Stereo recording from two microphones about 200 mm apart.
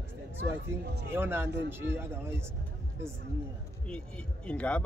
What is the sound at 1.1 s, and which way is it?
A man's voice, 10° right (ahead or behind).